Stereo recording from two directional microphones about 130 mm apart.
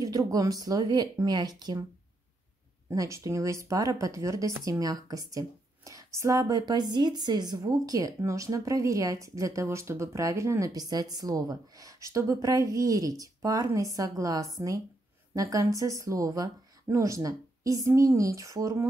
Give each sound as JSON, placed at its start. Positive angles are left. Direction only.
{"t": 0.0, "sound": "a woman's voice", "side_deg": -30}
{"t": 2.9, "sound": "a woman's voice", "side_deg": -25}